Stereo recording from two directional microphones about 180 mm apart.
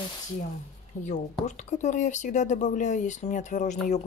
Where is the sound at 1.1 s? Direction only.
40° left (ahead or behind).